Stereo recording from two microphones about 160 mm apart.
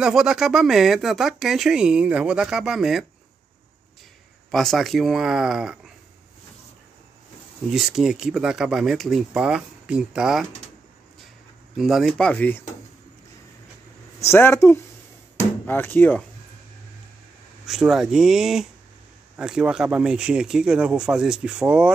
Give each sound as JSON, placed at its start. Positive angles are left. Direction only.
{"t": 0.0, "sound": "speech", "side_deg": 0}
{"t": 4.5, "sound": "speech", "side_deg": 0}
{"t": 7.7, "sound": "speech", "side_deg": -5}
{"t": 11.7, "sound": "speech", "side_deg": 0}
{"t": 14.2, "sound": "speech", "side_deg": 15}
{"t": 17.6, "sound": "speech", "side_deg": 0}